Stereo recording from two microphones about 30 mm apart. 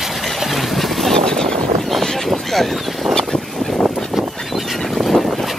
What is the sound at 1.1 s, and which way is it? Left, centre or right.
Vehicle, left.